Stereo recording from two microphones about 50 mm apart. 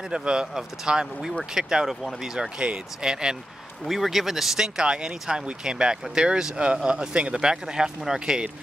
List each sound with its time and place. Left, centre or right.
0.1 s speech: centre
3.8 s speech: centre